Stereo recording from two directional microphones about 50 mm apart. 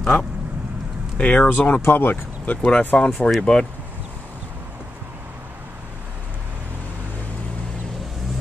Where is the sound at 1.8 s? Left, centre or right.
Left.